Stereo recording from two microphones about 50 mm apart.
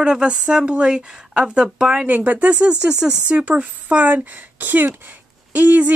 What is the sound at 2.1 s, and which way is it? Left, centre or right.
A woman's voice, right.